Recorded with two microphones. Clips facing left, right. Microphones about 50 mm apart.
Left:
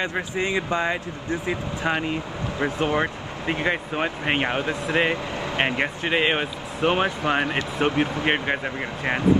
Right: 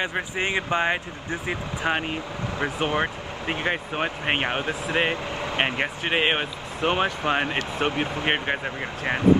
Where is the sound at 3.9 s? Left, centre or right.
Centre.